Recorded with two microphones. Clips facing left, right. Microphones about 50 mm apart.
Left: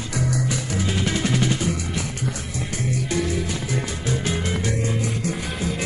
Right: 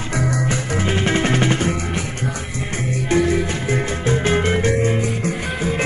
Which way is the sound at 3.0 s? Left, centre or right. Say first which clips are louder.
Right 10 dB; right.